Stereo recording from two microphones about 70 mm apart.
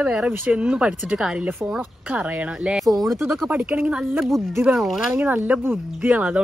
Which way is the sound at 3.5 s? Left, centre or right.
Centre.